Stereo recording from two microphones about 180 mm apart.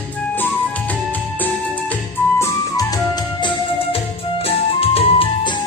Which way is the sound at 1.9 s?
15° left (ahead or behind).